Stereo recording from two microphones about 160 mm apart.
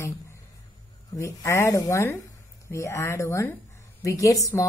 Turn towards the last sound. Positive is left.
turn(degrees=20)  # may be behind; listen again after turning